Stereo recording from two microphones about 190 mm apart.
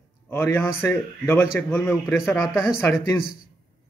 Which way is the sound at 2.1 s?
Centre (ahead or behind).